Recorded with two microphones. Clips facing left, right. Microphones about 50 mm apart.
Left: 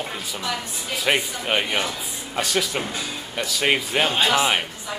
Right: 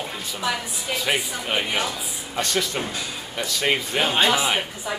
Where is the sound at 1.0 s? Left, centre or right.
Centre.